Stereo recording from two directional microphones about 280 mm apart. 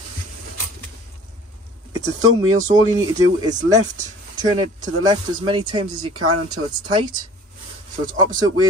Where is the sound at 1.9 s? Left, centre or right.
Centre.